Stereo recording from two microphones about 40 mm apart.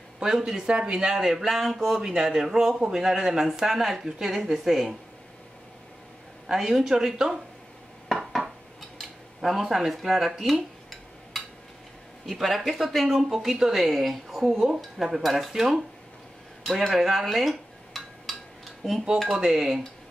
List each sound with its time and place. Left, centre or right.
0.2 s speech: centre
1.1 s speech: centre
6.4 s speech: centre
9.4 s speech: centre
16.6 s dishes: centre
18.8 s speech: centre
19.2 s speech: centre